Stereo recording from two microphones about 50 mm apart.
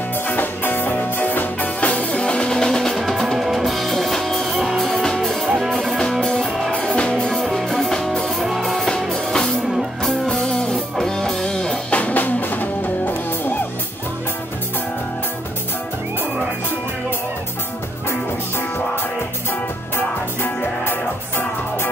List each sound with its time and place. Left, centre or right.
0.3 s music: left; by 6.7 s centre
6.7 s music: left
7.4 s music: centre
9.3 s music: centre
9.7 s music: centre
10.2 s music: centre
12.0 s music: left
20.0 s music: left